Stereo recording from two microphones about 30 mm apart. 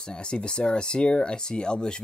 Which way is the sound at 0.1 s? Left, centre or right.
Left.